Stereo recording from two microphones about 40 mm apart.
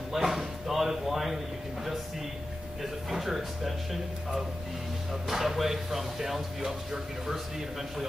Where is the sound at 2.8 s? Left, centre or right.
Centre.